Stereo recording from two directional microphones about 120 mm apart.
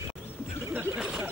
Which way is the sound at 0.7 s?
15° right (ahead or behind).